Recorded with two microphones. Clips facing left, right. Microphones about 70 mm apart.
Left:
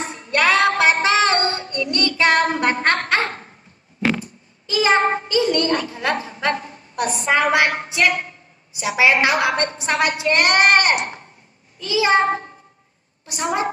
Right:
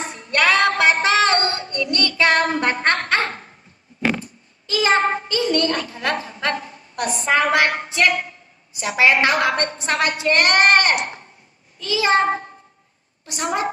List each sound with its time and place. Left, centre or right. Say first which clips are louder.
0.3 s music: left 1 dB; left
1.0 s synthetic singing: even; centre
1.7 s music: left 1 dB; centre
3.3 s dog: even; centre
4.2 s child singing: left 2 dB; centre
5.3 s music: left 2 dB; centre
7.0 s a woman's voice: even; centre
11.8 s music: left 1 dB; left